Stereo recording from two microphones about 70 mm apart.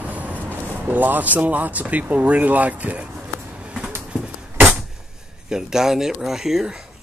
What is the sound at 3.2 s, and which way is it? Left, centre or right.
Vehicle, right.